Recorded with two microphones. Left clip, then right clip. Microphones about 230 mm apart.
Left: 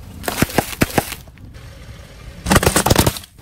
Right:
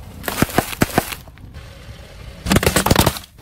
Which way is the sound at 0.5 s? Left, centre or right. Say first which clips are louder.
Even; centre.